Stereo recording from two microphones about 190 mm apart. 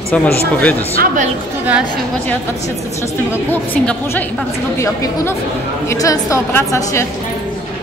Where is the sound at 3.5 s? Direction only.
10° left (ahead or behind).